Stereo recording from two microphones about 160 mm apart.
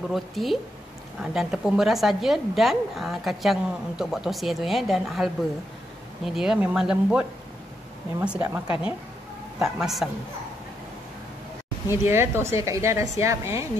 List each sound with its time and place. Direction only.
0.1 s a woman's voice: centre (ahead or behind)
11.9 s a woman's voice: 15° right (ahead or behind)